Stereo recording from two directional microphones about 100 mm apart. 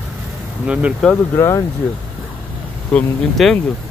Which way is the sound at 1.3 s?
25° left (ahead or behind).